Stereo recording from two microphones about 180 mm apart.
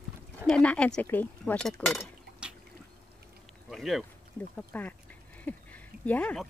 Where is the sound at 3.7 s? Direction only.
Centre (ahead or behind).